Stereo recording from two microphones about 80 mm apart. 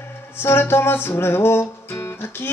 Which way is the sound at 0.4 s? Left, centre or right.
Left.